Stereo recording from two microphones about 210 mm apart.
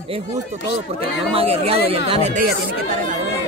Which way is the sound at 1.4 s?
30° right (ahead or behind).